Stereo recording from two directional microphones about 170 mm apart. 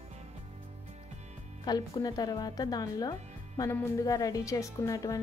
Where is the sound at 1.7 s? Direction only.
20° left (ahead or behind).